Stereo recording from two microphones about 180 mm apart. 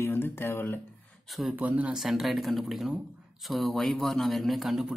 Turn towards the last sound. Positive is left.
turn(degrees=0)  # may be behind; listen again after turning